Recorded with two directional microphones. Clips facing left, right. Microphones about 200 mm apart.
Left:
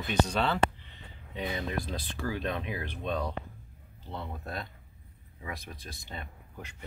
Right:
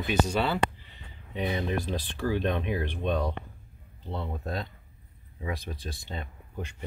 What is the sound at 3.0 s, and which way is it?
Speech, 15° right (ahead or behind).